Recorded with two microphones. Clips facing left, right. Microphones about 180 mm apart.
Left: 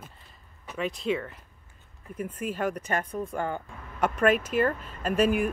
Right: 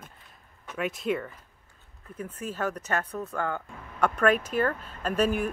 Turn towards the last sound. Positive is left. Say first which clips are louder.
# left 2 dB
turn(degrees=10)  # may be behind; listen again after turning